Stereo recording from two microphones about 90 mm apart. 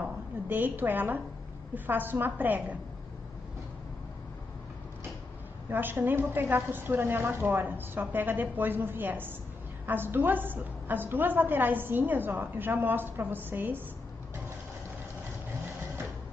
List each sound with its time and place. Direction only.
0.0 s a woman's voice: 20° right (ahead or behind)
5.7 s a woman's voice: 25° right (ahead or behind)